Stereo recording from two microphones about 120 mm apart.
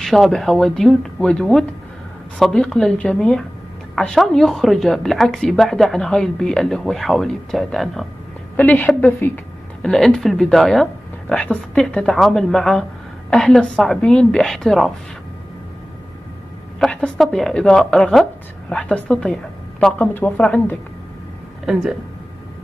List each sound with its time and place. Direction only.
0.0 s a woman's voice: centre (ahead or behind)
8.5 s a man's voice: 15° left (ahead or behind)
9.8 s a woman's voice: 5° left (ahead or behind)
16.8 s a man's voice: 10° left (ahead or behind)
21.6 s a woman's voice: centre (ahead or behind)